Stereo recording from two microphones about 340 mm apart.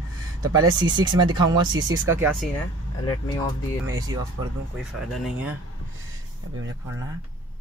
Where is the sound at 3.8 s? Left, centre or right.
Centre.